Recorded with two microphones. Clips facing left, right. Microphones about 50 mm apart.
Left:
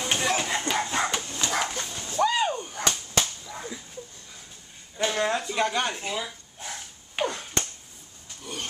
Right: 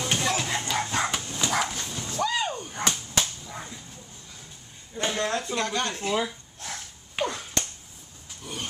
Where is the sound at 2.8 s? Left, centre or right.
Centre.